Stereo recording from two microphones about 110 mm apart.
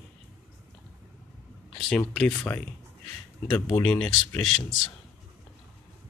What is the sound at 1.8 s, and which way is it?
Speech, 10° left (ahead or behind).